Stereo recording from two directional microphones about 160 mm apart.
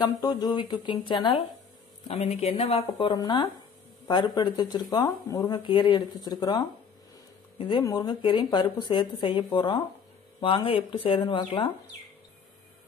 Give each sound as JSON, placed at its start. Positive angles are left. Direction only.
{"t": 0.2, "sound": "speech", "side_deg": 25}